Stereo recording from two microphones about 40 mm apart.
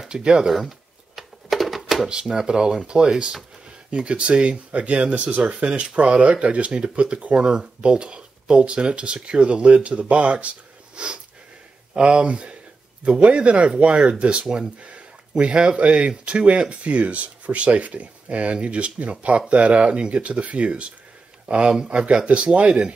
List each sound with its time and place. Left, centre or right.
0.1 s speech: right
0.5 s a sound: centre
2.0 s speech: right
7.3 s speech: right
14.4 s speech: centre
14.8 s speech: right